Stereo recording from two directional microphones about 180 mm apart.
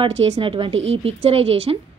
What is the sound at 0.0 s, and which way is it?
A woman's voice, 30° right (ahead or behind).